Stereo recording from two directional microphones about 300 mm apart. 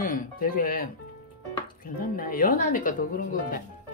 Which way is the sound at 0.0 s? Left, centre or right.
Left.